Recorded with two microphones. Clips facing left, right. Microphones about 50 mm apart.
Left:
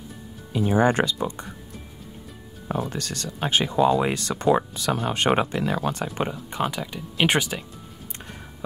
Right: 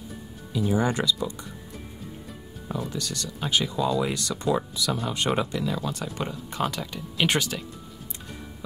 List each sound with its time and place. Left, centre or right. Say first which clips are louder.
0.5 s speech: left 4 dB; left
2.7 s speech: left 3 dB; left
6.2 s speech: left 5 dB; left
6.5 s speech: left 2 dB; centre